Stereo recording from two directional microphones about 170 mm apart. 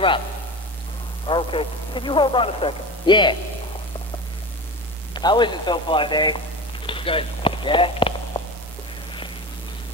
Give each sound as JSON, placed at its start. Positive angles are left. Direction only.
{"t": 1.2, "sound": "speech", "side_deg": 30}
{"t": 5.1, "sound": "speech", "side_deg": 25}
{"t": 6.9, "sound": "a sound", "side_deg": 30}